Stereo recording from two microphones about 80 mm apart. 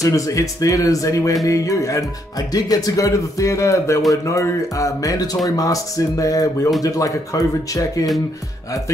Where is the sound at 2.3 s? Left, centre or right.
Left.